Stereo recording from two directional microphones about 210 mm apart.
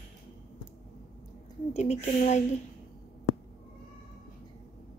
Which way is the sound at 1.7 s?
30° left (ahead or behind).